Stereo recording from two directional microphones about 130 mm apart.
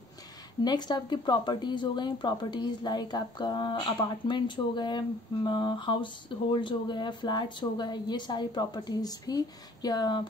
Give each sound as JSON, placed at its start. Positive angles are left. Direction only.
{"t": 0.7, "sound": "speech", "side_deg": 35}